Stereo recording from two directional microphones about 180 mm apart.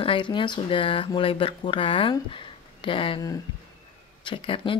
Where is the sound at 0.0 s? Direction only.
25° left (ahead or behind).